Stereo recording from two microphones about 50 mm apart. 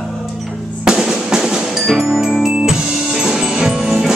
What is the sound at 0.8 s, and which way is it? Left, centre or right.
Drum, centre.